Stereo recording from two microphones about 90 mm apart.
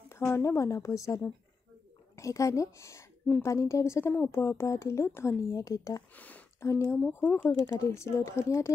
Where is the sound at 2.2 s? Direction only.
35° left (ahead or behind).